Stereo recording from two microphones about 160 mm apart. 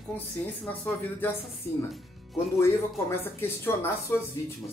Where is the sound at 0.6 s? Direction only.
10° left (ahead or behind).